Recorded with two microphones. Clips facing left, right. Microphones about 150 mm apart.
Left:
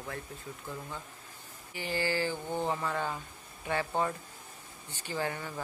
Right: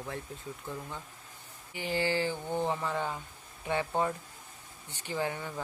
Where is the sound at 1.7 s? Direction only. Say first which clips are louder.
Right 2 dB; 15° right (ahead or behind).